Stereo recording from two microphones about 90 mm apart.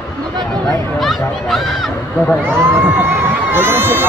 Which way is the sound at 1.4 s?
Centre (ahead or behind).